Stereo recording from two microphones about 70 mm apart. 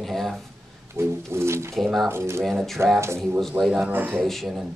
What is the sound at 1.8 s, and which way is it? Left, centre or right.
Speech, centre.